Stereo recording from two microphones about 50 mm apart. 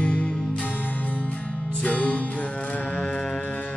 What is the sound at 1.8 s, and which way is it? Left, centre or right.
Music, left.